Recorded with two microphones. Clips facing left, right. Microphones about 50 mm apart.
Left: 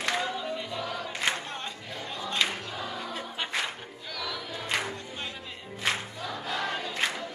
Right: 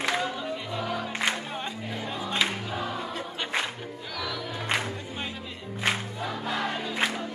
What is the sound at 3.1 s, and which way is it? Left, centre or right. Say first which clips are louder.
Music: right 2 dB; centre.